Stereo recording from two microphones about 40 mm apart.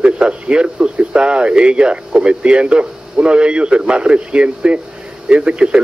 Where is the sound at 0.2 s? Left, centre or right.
Right.